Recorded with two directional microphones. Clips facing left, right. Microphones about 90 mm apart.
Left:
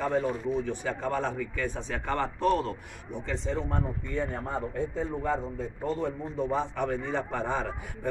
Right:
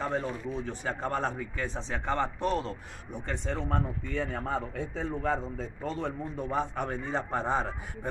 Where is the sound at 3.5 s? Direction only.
85° right.